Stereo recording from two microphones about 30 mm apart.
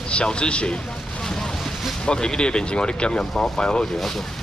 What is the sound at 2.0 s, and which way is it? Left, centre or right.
Speech, left.